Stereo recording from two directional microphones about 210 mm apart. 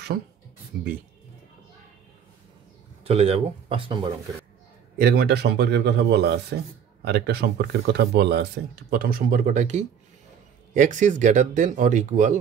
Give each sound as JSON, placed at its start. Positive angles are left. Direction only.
{"t": 3.0, "sound": "speech", "side_deg": -30}
{"t": 4.9, "sound": "speech", "side_deg": -50}